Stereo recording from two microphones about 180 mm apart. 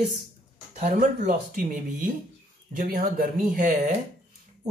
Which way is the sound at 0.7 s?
45° right (ahead or behind).